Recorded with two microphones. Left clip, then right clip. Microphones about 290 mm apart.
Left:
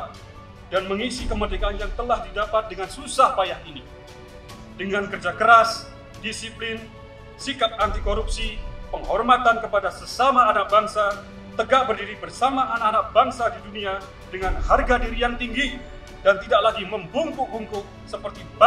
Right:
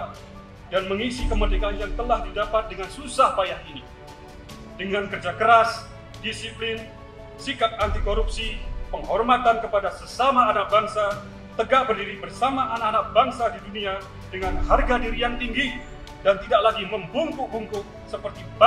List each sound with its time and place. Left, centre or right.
0.7 s a man's voice: left
4.7 s a man's voice: left